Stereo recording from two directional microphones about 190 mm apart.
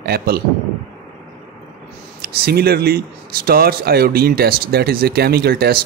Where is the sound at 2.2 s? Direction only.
55° right (ahead or behind).